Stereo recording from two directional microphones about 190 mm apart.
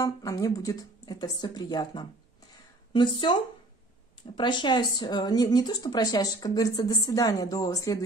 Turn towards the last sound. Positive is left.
turn(degrees=20)  # may be behind; listen again after turning